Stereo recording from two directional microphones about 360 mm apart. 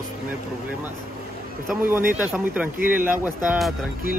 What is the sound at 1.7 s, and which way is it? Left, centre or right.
Speech, centre.